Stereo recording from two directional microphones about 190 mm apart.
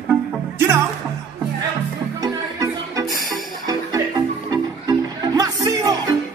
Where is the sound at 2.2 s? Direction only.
20° right (ahead or behind).